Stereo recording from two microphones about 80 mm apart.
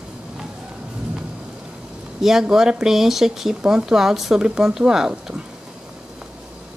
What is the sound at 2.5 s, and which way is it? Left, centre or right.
Speech, centre.